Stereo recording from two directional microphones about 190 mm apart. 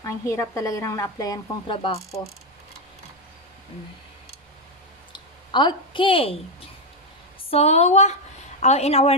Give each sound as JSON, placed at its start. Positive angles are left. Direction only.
{"t": 0.0, "sound": "speech", "side_deg": 15}
{"t": 2.0, "sound": "speech", "side_deg": 15}
{"t": 5.1, "sound": "a sound", "side_deg": 25}
{"t": 7.4, "sound": "a woman's voice", "side_deg": 35}